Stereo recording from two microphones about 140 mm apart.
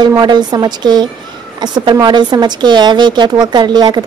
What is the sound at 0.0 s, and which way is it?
Speech, 30° right (ahead or behind).